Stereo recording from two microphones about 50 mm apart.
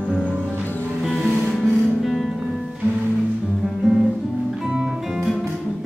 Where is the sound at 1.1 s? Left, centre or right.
Centre.